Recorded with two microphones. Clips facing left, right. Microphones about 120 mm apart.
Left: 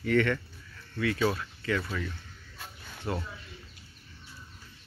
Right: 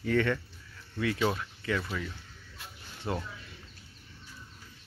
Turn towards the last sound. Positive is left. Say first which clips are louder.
# even
turn(degrees=-20)  # may be behind; listen again after turning